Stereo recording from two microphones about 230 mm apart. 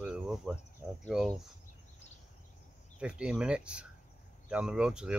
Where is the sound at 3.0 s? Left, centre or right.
Centre.